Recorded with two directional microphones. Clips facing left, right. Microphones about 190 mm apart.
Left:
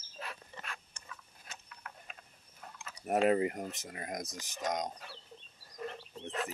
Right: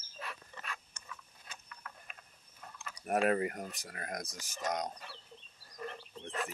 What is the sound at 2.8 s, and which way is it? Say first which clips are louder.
Speech: left 2 dB; 20° left (ahead or behind).